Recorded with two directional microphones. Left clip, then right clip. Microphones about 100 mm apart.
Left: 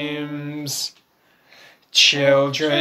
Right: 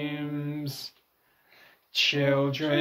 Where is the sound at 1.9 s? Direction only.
30° left (ahead or behind).